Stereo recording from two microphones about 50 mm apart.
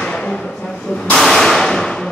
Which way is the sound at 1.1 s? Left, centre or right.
Centre.